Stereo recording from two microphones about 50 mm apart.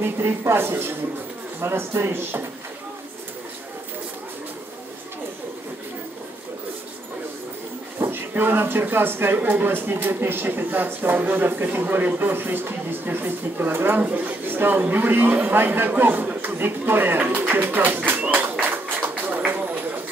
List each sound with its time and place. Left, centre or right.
0.4 s speech: right
8.0 s a man's voice: right
18.3 s a sound: right